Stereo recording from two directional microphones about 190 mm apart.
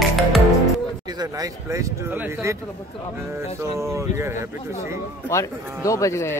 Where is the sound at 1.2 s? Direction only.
15° right (ahead or behind).